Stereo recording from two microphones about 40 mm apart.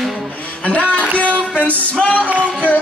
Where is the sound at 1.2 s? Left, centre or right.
Left.